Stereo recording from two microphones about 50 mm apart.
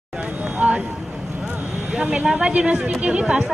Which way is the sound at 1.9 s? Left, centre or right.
Centre.